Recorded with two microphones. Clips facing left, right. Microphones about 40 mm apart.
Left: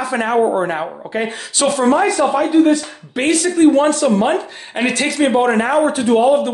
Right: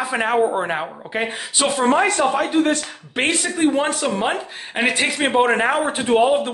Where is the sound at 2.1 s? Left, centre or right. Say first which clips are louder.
Left 4 dB; right.